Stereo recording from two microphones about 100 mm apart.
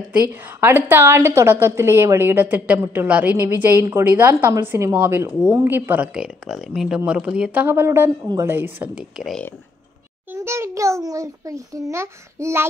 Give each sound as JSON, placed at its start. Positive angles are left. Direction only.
{"t": 0.3, "sound": "a woman's voice", "side_deg": -20}
{"t": 6.1, "sound": "speech", "side_deg": -5}
{"t": 7.6, "sound": "a woman's voice", "side_deg": -25}
{"t": 10.3, "sound": "a child's voice", "side_deg": -25}